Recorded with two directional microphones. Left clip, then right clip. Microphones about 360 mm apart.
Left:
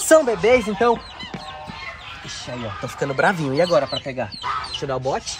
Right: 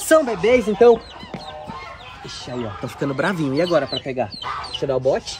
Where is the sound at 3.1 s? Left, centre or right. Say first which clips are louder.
Left 3 dB; left.